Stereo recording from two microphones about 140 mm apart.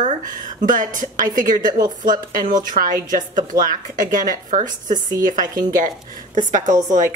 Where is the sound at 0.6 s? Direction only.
70° right (ahead or behind).